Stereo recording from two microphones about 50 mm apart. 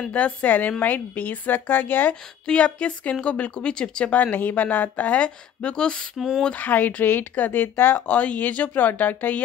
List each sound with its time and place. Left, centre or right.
0.1 s a woman's voice: left
2.4 s speech: left
6.1 s a sound: centre
6.4 s a woman's voice: left
8.1 s a woman's voice: left